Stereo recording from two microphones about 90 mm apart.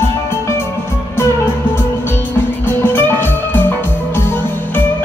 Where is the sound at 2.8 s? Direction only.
25° left (ahead or behind).